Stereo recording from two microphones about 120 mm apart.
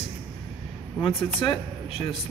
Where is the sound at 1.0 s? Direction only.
45° left (ahead or behind).